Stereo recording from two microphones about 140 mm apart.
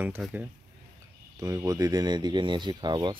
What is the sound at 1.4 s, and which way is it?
Speech, 25° right (ahead or behind).